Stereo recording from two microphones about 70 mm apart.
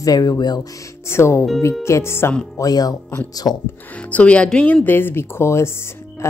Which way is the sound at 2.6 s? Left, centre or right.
Left.